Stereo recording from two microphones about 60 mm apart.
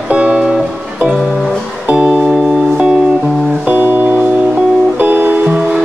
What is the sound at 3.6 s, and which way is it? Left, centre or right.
Music, right.